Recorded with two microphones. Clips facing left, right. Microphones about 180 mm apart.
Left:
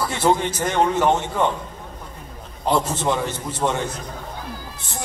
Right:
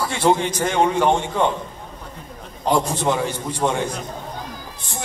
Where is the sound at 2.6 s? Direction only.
10° right (ahead or behind).